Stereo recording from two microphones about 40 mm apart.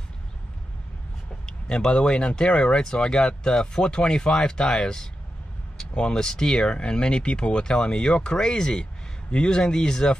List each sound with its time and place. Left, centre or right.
1.4 s speech: centre